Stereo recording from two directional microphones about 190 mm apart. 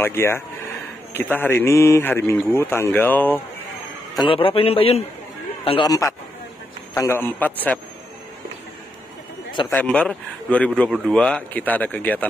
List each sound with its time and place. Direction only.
0.0 s a man's voice: 15° left (ahead or behind)
4.2 s a man's voice: 25° left (ahead or behind); by 7.8 s 10° left (ahead or behind)
9.7 s a man's voice: 5° left (ahead or behind)